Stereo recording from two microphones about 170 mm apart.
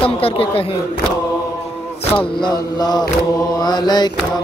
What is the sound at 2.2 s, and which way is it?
Mantra, 25° left (ahead or behind).